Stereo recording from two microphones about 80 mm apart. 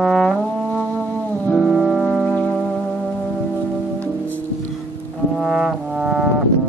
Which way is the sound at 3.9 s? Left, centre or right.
Left.